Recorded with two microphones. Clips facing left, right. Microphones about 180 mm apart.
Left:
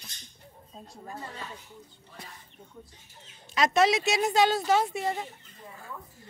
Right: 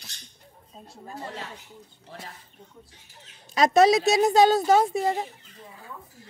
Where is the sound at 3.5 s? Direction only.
40° right (ahead or behind).